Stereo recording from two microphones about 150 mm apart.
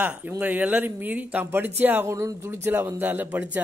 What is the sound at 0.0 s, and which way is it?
A man's voice, 10° right (ahead or behind).